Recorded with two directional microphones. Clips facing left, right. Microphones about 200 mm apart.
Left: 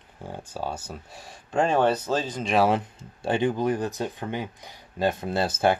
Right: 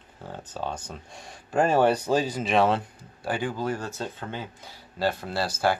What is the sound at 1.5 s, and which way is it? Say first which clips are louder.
Speech: right 1 dB; 5° right (ahead or behind).